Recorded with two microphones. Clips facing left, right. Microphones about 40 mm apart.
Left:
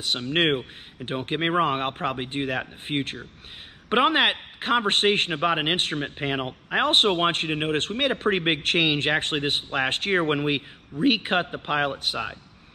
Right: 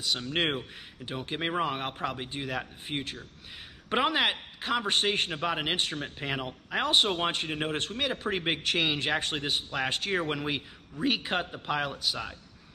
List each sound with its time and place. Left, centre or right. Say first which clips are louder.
1.0 s a man's voice: left 7 dB; left
5.3 s a man's voice: left 6 dB; left
7.1 s speech: left 7 dB; left
8.0 s a man's voice: left 7 dB; left